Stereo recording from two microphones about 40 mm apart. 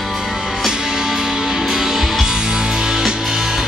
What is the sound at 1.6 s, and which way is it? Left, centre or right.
Music, centre.